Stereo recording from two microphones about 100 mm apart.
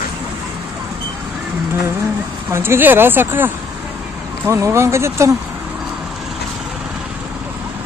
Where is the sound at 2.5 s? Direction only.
25° right (ahead or behind).